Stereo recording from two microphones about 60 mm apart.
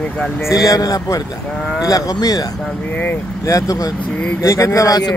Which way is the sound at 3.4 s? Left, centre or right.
Left.